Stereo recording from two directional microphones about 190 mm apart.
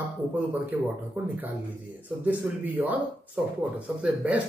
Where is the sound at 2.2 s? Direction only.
10° right (ahead or behind).